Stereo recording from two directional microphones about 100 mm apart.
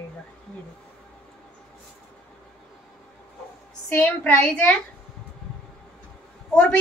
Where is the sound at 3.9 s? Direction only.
15° left (ahead or behind).